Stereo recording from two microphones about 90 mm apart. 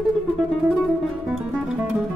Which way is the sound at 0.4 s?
10° right (ahead or behind).